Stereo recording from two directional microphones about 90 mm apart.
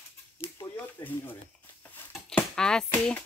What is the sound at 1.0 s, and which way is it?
Speech, 20° left (ahead or behind).